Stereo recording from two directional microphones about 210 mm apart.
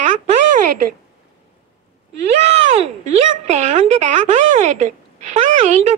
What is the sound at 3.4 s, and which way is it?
A woman's voice, 35° right (ahead or behind).